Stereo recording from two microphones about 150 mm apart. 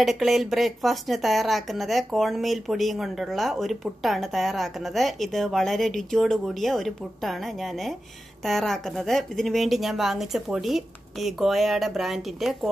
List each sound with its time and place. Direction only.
0.0 s speech: centre (ahead or behind)